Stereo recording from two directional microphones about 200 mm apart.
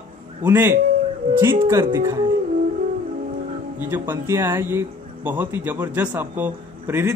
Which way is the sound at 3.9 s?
10° right (ahead or behind).